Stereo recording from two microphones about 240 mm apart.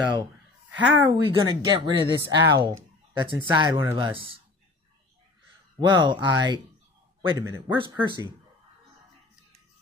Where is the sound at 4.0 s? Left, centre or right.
Right.